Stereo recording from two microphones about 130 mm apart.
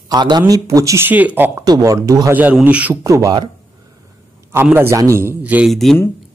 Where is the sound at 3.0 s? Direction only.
25° right (ahead or behind).